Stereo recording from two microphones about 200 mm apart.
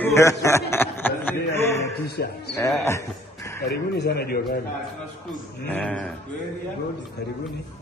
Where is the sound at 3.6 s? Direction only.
55° left (ahead or behind).